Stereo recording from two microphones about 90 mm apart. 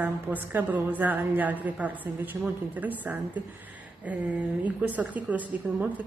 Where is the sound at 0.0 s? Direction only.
20° right (ahead or behind).